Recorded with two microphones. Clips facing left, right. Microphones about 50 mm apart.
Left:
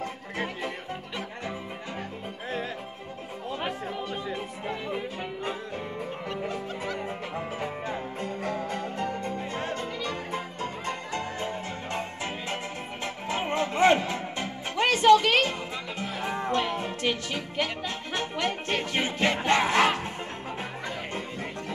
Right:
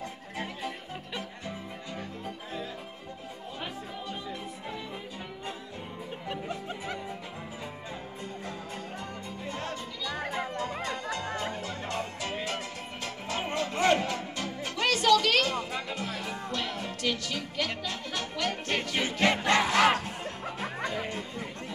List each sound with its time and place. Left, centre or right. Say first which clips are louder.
3.6 s music: left 5 dB; left
7.3 s music: left 8 dB; left
9.4 s music: left 4 dB; left
10.0 s music: even; left
21.1 s music: left 3 dB; left